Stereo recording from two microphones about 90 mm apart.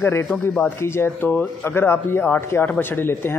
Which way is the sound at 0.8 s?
25° left (ahead or behind).